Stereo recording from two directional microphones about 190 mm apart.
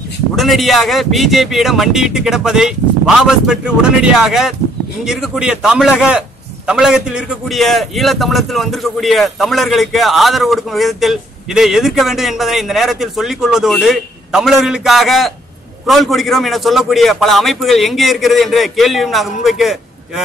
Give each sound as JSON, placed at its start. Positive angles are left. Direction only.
{"t": 0.4, "sound": "a man's voice", "side_deg": 0}